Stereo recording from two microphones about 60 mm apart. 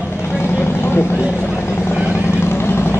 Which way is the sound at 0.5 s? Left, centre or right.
Left.